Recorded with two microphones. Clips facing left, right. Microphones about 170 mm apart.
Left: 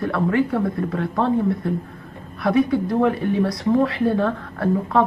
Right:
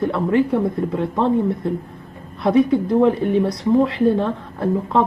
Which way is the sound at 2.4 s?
20° right (ahead or behind).